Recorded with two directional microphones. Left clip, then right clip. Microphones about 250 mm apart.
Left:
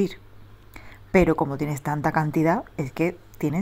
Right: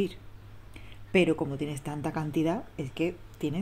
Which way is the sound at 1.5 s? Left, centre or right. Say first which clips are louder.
Left 8 dB; centre.